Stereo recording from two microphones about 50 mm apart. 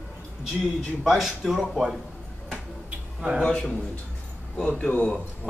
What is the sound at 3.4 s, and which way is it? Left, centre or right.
Speech, centre.